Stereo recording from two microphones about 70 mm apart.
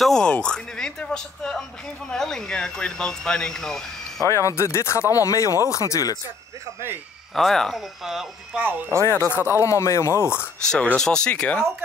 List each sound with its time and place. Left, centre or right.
0.0 s speech: centre
4.2 s speech: left
7.3 s speech: centre
8.5 s speech: right
9.0 s speech: left
11.0 s speech: centre